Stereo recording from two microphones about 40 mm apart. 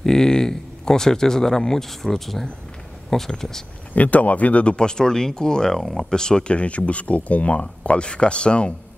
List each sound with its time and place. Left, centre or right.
0.0 s speech: centre
3.9 s speech: left
4.7 s speech: centre
6.5 s speech: left